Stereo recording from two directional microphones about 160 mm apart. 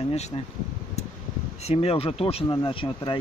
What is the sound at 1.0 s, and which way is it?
Mechanical fan, 45° left (ahead or behind).